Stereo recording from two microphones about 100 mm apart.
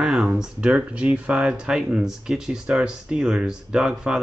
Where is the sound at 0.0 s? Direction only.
Centre (ahead or behind).